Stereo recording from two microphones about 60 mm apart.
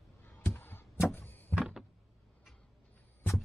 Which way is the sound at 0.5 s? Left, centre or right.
Left.